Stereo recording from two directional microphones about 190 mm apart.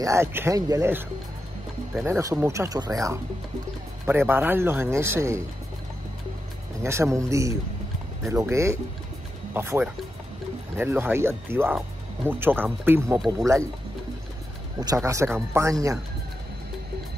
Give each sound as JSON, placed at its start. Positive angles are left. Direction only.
{"t": 0.0, "sound": "a man's voice", "side_deg": -15}
{"t": 2.0, "sound": "a man's voice", "side_deg": -15}
{"t": 6.8, "sound": "a man's voice", "side_deg": -15}
{"t": 14.8, "sound": "a man's voice", "side_deg": -20}